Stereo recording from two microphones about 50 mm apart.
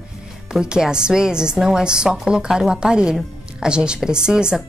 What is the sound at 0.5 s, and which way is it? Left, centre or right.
A woman's voice, centre.